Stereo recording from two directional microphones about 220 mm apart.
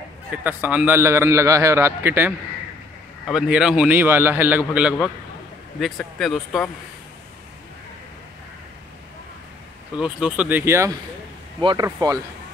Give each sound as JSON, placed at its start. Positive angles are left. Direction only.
{"t": 0.3, "sound": "a man's voice", "side_deg": -5}
{"t": 9.9, "sound": "a man's voice", "side_deg": -5}